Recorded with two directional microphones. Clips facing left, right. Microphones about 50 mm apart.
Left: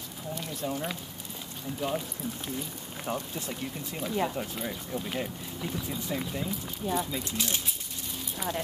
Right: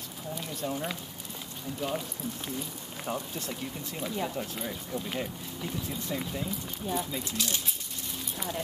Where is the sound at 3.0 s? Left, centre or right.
Centre.